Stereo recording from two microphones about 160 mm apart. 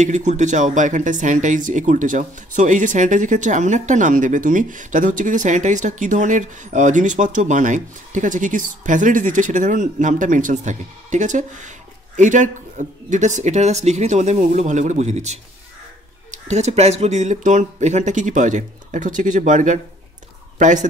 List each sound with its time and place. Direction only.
0.0 s speech: 50° right (ahead or behind)
16.4 s speech: 45° right (ahead or behind)